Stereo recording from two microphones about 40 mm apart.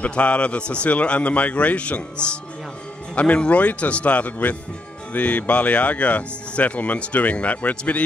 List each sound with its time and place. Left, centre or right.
0.0 s speech: left